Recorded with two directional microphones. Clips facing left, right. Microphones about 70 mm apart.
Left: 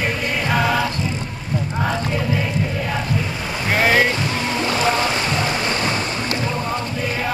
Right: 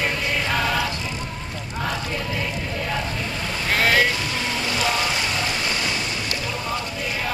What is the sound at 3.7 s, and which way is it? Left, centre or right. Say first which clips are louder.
Boat: left 3 dB; centre.